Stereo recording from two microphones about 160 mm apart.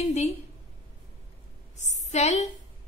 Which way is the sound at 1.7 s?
45° left (ahead or behind).